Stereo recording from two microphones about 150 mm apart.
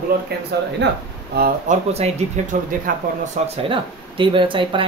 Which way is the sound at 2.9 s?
70° right (ahead or behind).